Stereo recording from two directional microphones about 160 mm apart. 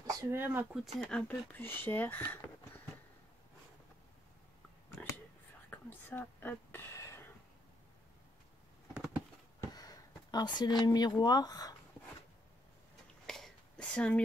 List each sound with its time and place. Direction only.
0.0 s speech: 15° right (ahead or behind)
0.9 s speech: 5° left (ahead or behind)
5.7 s whispering: 10° left (ahead or behind)
8.9 s a sound: 5° right (ahead or behind)
9.6 s speech: 25° left (ahead or behind)
13.3 s a sound: 5° left (ahead or behind)